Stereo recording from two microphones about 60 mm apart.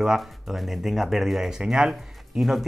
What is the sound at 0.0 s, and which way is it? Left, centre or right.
Speech, centre.